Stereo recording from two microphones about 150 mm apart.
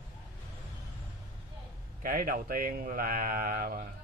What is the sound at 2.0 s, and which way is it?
Speech, 75° right (ahead or behind).